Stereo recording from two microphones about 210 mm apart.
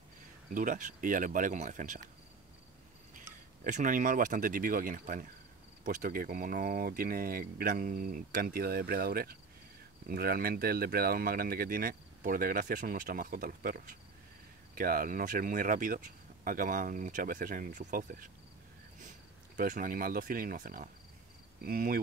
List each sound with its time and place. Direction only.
0.6 s speech: 40° right (ahead or behind)
3.6 s speech: 35° right (ahead or behind)
19.5 s speech: 40° right (ahead or behind)